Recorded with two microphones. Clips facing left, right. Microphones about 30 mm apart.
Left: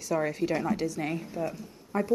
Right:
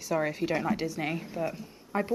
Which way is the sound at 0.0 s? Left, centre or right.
Centre.